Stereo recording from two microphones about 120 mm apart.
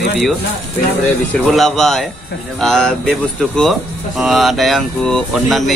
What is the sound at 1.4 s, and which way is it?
Speech, centre (ahead or behind).